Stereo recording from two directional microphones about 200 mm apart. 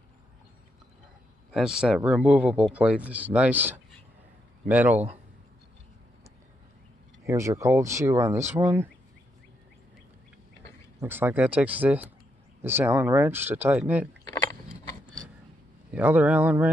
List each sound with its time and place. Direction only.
1.5 s speech: 5° right (ahead or behind)
7.2 s speech: 15° right (ahead or behind)
11.0 s speech: 10° right (ahead or behind)
14.2 s a sound: 15° left (ahead or behind)
15.9 s speech: 5° right (ahead or behind)